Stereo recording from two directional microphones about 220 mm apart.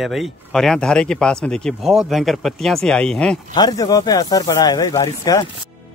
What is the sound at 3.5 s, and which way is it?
A man's voice, 15° left (ahead or behind).